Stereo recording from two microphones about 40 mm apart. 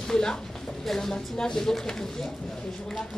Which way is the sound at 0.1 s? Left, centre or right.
Centre.